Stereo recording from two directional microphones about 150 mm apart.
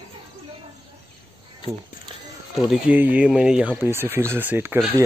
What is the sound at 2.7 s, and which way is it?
Speech, 10° right (ahead or behind).